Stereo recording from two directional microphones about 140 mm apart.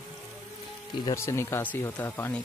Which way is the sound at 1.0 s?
20° left (ahead or behind).